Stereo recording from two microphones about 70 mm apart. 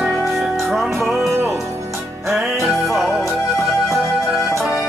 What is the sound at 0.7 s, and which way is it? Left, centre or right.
Music, centre.